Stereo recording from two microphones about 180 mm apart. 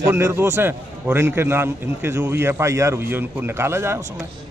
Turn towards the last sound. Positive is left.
turn(degrees=-15)  # may be behind; listen again after turning